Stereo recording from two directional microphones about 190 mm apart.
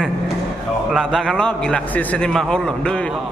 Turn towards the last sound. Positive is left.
turn(degrees=5)  # may be behind; listen again after turning